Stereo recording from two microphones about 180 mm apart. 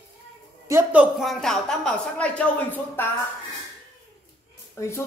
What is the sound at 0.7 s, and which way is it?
A woman's voice, 10° right (ahead or behind).